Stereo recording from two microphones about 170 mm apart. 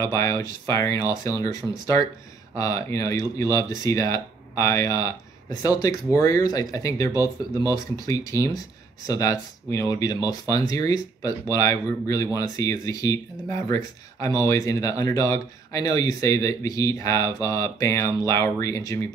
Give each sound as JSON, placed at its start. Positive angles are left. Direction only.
{"t": 0.0, "sound": "speech", "side_deg": 20}
{"t": 14.2, "sound": "speech", "side_deg": 20}